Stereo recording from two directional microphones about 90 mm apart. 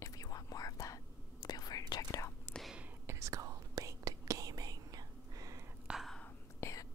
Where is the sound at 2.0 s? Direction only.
35° left (ahead or behind).